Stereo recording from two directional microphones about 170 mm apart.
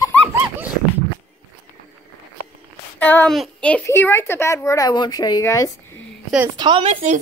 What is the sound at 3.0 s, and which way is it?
A woman's voice, 10° left (ahead or behind).